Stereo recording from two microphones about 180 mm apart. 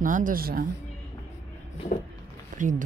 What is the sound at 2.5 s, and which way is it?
Speech, 45° right (ahead or behind).